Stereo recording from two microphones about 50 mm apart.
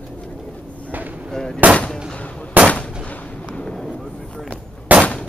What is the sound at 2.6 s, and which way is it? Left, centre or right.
Gunshot, right.